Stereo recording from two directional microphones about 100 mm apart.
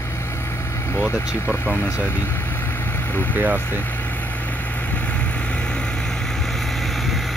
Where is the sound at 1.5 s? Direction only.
25° left (ahead or behind).